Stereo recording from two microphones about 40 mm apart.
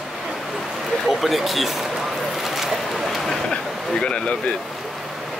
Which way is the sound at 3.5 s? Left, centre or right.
Left.